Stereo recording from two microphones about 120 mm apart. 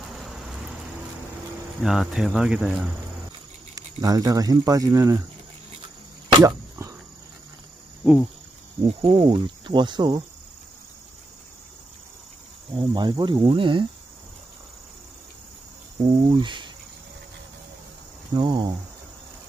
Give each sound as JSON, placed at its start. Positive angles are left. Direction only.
{"t": 0.0, "sound": "vehicle", "side_deg": 0}
{"t": 1.8, "sound": "cricket", "side_deg": -5}
{"t": 3.7, "sound": "speech", "side_deg": -30}
{"t": 6.4, "sound": "arrow", "side_deg": -25}
{"t": 8.0, "sound": "cricket", "side_deg": -10}
{"t": 8.8, "sound": "cricket", "side_deg": -45}
{"t": 12.7, "sound": "cricket", "side_deg": -35}
{"t": 16.3, "sound": "cricket", "side_deg": -40}
{"t": 18.3, "sound": "cricket", "side_deg": -35}